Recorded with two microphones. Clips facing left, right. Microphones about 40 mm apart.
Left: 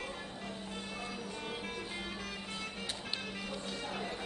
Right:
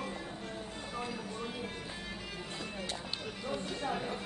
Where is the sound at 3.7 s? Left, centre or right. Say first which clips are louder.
Right 6 dB; right.